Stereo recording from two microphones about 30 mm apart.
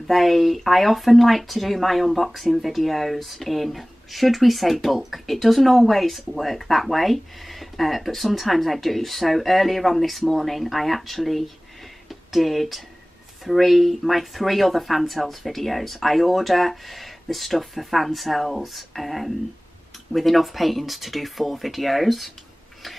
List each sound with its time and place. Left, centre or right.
0.0 s speech: centre